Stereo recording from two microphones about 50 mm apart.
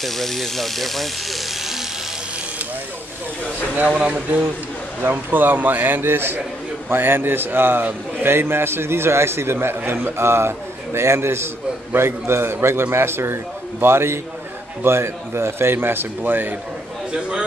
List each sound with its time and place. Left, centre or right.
0.0 s speech: centre
3.7 s speech: right
5.1 s a man's voice: right